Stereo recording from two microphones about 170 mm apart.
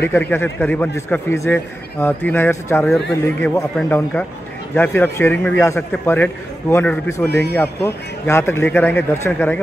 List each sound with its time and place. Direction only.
0.0 s a man's voice: 10° left (ahead or behind)
7.2 s speech: 80° left
7.5 s a man's voice: 15° left (ahead or behind)